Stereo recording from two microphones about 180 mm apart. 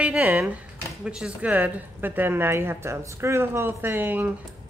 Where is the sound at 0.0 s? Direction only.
5° right (ahead or behind).